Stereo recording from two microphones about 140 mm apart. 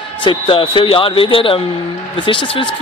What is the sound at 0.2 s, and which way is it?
Speech, 35° left (ahead or behind).